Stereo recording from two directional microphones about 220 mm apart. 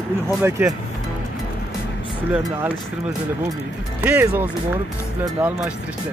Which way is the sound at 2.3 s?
10° right (ahead or behind).